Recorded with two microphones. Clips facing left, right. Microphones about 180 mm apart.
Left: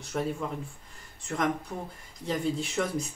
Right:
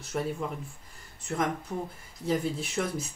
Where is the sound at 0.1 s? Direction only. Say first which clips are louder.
Left 1 dB; 5° right (ahead or behind).